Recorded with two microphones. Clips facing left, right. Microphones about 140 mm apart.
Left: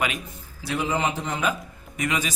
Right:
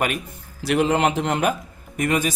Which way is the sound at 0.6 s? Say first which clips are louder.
Right 6 dB; 75° right (ahead or behind).